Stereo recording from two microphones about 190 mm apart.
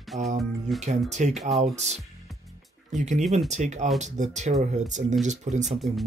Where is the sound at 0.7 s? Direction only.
35° right (ahead or behind).